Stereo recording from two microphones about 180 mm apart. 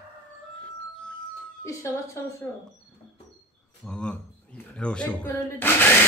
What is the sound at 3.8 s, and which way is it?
Speech, 5° left (ahead or behind).